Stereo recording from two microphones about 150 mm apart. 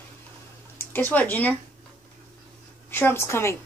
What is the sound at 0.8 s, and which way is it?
Speech, 15° left (ahead or behind).